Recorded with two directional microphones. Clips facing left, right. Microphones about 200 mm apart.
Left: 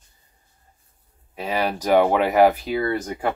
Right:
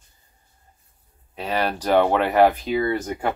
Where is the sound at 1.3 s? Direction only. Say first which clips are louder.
Even; 10° left (ahead or behind).